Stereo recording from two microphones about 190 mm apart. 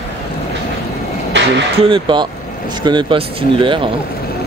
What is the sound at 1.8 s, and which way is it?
Speech, 25° right (ahead or behind).